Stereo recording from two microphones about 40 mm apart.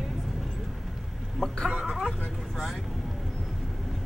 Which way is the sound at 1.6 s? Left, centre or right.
Centre.